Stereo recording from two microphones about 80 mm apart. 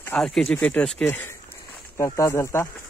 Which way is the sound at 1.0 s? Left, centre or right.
Left.